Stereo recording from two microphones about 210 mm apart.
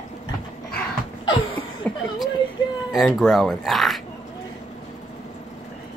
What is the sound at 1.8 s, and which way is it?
Chuckle, 5° left (ahead or behind).